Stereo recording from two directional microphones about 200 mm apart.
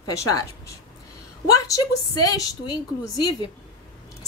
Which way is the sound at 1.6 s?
15° left (ahead or behind).